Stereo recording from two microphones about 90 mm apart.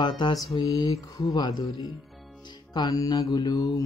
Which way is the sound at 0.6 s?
50° left (ahead or behind).